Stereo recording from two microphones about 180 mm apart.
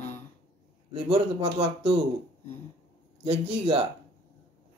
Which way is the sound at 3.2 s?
35° right (ahead or behind).